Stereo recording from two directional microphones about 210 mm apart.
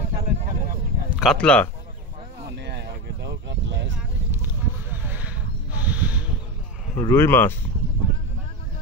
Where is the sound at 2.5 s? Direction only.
55° right (ahead or behind).